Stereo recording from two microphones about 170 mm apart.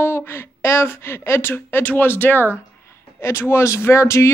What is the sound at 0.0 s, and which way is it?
Speech, 15° left (ahead or behind).